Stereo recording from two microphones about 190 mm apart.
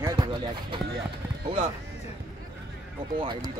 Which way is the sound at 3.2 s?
25° right (ahead or behind).